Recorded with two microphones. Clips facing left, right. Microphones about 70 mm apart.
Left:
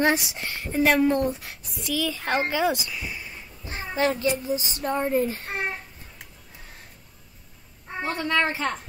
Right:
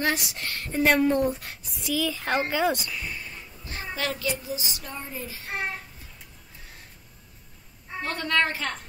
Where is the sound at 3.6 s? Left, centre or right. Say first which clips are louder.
Left 6 dB; left.